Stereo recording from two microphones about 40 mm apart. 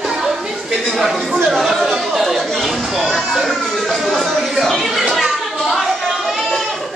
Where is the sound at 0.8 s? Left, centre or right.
Centre.